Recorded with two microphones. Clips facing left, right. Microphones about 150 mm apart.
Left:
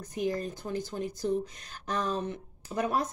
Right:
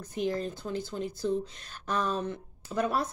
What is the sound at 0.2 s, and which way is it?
Speech, 15° left (ahead or behind).